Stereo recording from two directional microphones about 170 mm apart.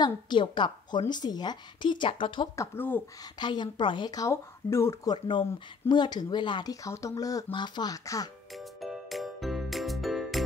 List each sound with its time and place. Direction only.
0.0 s a woman's voice: 25° left (ahead or behind)
2.5 s speech: 15° left (ahead or behind)
3.3 s a woman's voice: 25° left (ahead or behind)
8.5 s music: centre (ahead or behind)